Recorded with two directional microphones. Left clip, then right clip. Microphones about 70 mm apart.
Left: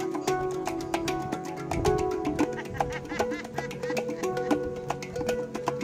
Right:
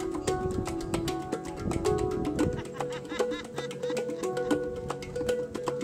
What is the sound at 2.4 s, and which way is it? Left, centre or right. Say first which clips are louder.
Music: left 2 dB; left.